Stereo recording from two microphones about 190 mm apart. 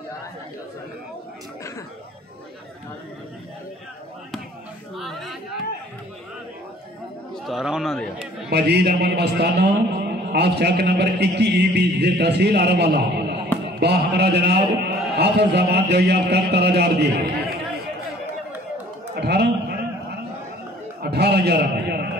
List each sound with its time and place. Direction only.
4.9 s chatter: centre (ahead or behind)
7.4 s speech: centre (ahead or behind)
8.5 s a man's voice: 60° right (ahead or behind)
19.1 s a man's voice: 60° right (ahead or behind)
21.0 s a man's voice: 60° right (ahead or behind)